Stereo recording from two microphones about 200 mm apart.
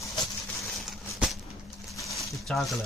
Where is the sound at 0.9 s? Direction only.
Centre (ahead or behind).